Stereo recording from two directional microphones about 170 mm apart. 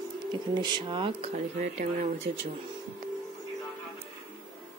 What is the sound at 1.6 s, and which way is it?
Speech, 50° right (ahead or behind).